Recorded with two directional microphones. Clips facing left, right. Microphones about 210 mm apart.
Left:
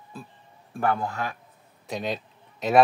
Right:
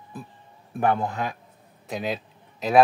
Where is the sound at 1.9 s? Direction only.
5° right (ahead or behind).